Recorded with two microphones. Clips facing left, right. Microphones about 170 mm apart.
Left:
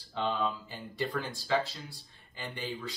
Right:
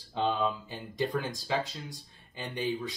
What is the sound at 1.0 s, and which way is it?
Speech, 15° right (ahead or behind).